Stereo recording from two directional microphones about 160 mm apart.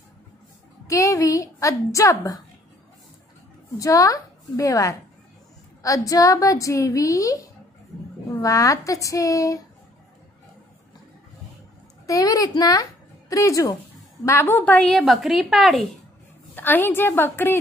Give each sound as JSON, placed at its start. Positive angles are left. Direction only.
{"t": 0.8, "sound": "a woman's voice", "side_deg": 20}
{"t": 3.7, "sound": "a woman's voice", "side_deg": 20}
{"t": 8.4, "sound": "a woman's voice", "side_deg": 20}
{"t": 12.1, "sound": "a woman's voice", "side_deg": 20}
{"t": 16.5, "sound": "a woman's voice", "side_deg": 15}